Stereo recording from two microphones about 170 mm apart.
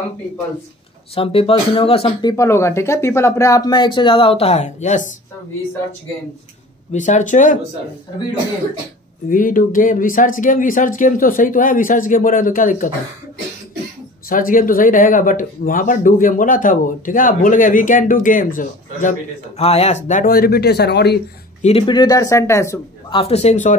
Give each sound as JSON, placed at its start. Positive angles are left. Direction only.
{"t": 1.1, "sound": "speech", "side_deg": 35}
{"t": 2.3, "sound": "speech", "side_deg": 15}
{"t": 6.9, "sound": "speech", "side_deg": 45}
{"t": 9.3, "sound": "speech", "side_deg": 55}
{"t": 14.3, "sound": "speech", "side_deg": 55}
{"t": 21.6, "sound": "speech", "side_deg": 30}
{"t": 23.1, "sound": "speech", "side_deg": 35}